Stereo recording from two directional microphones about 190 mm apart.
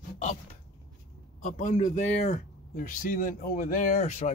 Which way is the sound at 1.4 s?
45° left (ahead or behind).